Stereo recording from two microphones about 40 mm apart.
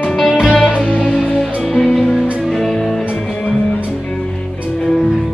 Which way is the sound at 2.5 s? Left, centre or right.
Centre.